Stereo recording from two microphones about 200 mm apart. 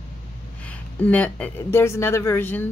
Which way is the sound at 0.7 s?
5° left (ahead or behind).